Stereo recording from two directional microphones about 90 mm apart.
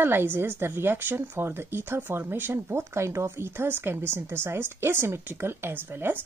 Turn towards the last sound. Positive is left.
turn(degrees=-25)  # may be behind; listen again after turning